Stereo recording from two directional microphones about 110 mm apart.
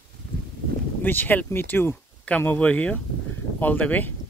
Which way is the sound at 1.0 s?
15° left (ahead or behind).